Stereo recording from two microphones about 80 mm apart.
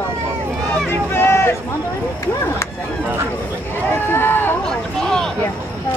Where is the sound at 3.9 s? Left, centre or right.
Left.